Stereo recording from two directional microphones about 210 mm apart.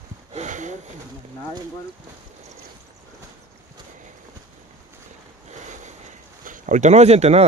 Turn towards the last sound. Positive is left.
turn(degrees=-30)  # may be behind; listen again after turning